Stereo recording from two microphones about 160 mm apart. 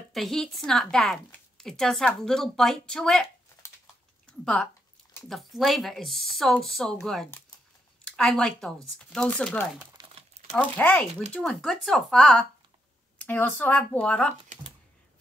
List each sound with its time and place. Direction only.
0.1 s a woman's voice: centre (ahead or behind)
5.3 s a woman's voice: centre (ahead or behind)
9.9 s crumpling: 30° right (ahead or behind)
10.5 s a woman's voice: 10° left (ahead or behind)